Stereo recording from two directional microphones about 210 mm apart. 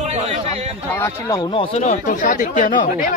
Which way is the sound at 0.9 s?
15° left (ahead or behind).